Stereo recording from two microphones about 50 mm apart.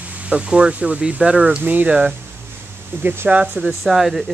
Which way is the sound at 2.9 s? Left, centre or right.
Right.